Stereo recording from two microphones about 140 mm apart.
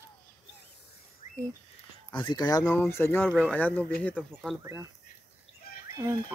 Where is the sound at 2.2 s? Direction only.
30° left (ahead or behind).